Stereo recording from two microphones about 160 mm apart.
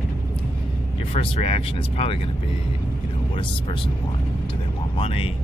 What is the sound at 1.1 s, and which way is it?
Speech, 40° left (ahead or behind).